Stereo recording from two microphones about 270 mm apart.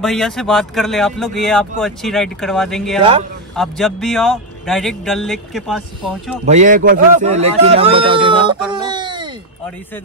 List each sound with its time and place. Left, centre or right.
0.0 s speech: centre
3.0 s a man's voice: centre
3.5 s speech: centre
6.4 s a man's voice: right
8.7 s a sound: centre